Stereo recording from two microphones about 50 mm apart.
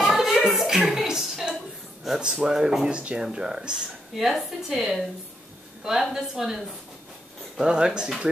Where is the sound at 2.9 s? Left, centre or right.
Centre.